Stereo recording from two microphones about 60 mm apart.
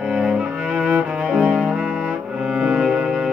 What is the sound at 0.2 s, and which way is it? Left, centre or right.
Cello, centre.